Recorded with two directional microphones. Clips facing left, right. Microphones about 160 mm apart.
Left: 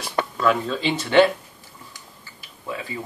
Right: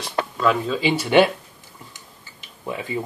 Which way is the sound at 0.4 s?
Centre (ahead or behind).